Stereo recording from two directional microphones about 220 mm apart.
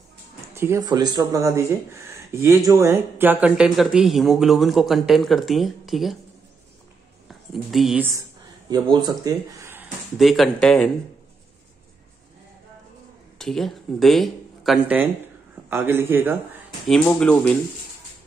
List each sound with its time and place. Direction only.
0.6 s speech: 15° right (ahead or behind)
7.2 s a sound: centre (ahead or behind)
8.9 s speech: 15° right (ahead or behind); by 10.9 s centre (ahead or behind)
13.4 s a man's voice: centre (ahead or behind)
16.8 s speech: centre (ahead or behind)